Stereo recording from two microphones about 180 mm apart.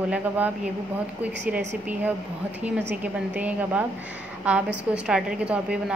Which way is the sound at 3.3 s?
10° right (ahead or behind).